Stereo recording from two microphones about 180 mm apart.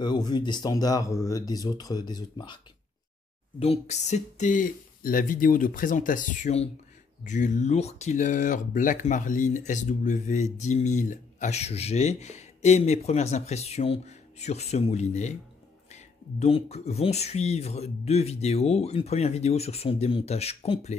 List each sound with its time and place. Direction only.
0.0 s speech: 25° left (ahead or behind)